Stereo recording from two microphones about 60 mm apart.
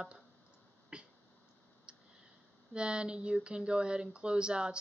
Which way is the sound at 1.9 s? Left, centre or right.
Centre.